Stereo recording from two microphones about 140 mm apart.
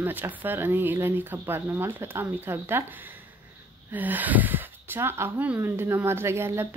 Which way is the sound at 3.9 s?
10° right (ahead or behind).